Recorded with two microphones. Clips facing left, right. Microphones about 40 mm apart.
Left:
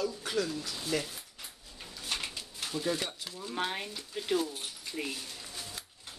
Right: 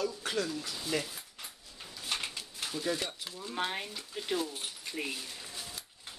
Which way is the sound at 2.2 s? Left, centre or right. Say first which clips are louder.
Even; centre.